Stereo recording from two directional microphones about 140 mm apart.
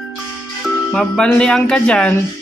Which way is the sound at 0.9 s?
5° left (ahead or behind).